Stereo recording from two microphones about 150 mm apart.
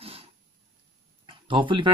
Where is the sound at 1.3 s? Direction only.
35° right (ahead or behind).